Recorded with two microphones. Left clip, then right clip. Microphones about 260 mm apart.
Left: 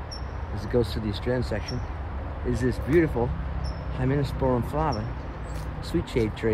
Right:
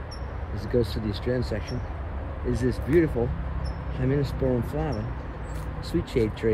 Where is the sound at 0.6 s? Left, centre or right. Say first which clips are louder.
Even; left.